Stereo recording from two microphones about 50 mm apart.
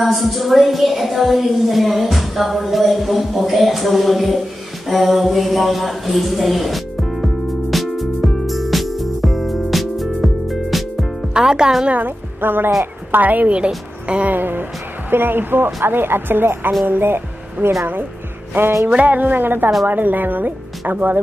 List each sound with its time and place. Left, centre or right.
0.0 s a woman's voice: centre
7.7 s music: centre
11.3 s speech: centre
11.9 s a woman's voice: right
13.1 s speech: right
14.0 s music: right
14.3 s speech: right
18.9 s speech: right